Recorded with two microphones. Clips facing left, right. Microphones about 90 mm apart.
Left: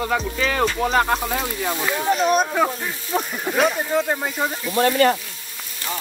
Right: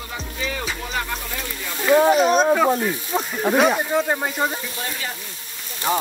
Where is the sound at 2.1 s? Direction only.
5° right (ahead or behind).